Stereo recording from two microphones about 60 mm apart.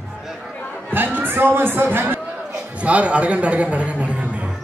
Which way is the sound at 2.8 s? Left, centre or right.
Right.